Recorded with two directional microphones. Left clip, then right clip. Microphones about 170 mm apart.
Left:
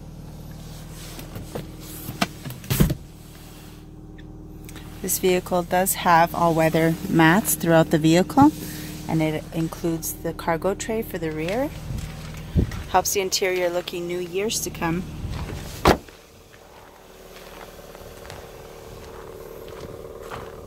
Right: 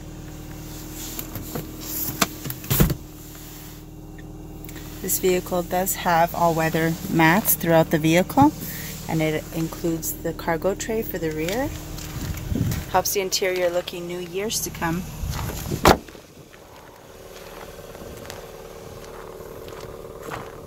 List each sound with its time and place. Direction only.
5.0 s speech: 30° left (ahead or behind)
12.9 s speech: 25° left (ahead or behind)
15.8 s vehicle: centre (ahead or behind)
19.8 s vehicle: centre (ahead or behind)